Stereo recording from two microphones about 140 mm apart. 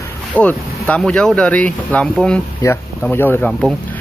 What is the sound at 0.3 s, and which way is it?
Speech, 10° left (ahead or behind).